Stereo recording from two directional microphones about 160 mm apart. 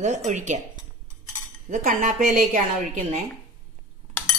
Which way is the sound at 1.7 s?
55° right (ahead or behind).